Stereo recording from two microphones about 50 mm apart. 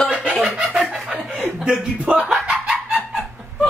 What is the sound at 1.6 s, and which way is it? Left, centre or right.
Speech, centre.